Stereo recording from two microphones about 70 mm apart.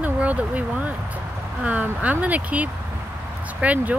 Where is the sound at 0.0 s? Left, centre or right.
Right.